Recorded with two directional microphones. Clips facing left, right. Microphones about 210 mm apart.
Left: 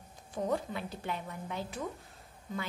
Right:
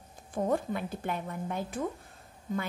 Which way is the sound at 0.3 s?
50° right (ahead or behind).